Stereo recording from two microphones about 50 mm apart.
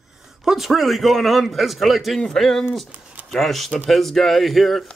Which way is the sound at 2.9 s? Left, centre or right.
Right.